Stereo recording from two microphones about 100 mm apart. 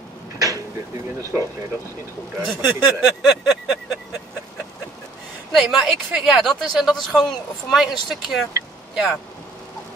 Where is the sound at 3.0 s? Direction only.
5° right (ahead or behind).